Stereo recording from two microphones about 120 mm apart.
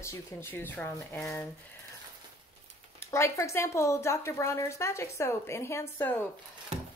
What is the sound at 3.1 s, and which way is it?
A woman's voice, 25° left (ahead or behind).